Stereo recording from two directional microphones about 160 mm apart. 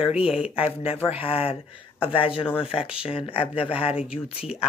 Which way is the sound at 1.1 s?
35° left (ahead or behind).